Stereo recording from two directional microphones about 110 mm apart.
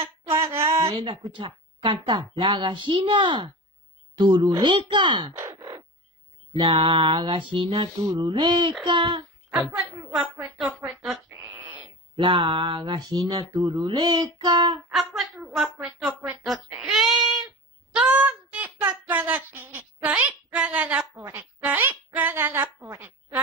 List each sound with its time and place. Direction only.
0.3 s a sound: 25° right (ahead or behind)
0.8 s speech: 55° right (ahead or behind)
5.3 s crow: 25° right (ahead or behind)
6.5 s speech: 45° right (ahead or behind)
8.0 s speech: 40° right (ahead or behind)
11.0 s sheep: 10° right (ahead or behind)
12.2 s speech: 50° right (ahead or behind)
14.9 s speech: 5° right (ahead or behind)
16.4 s a sound: centre (ahead or behind)
20.5 s a woman's voice: 10° right (ahead or behind)